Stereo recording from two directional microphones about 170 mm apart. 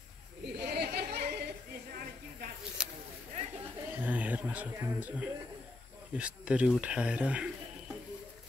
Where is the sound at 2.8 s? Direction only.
5° right (ahead or behind).